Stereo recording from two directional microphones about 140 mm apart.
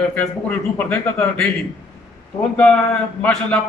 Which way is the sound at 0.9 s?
10° left (ahead or behind).